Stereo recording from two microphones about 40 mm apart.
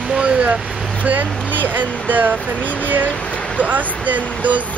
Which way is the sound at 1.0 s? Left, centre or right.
Right.